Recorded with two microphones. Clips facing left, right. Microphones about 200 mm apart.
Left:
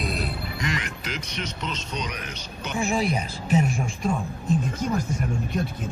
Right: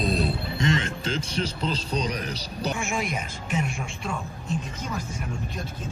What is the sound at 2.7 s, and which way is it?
Speech, 35° left (ahead or behind).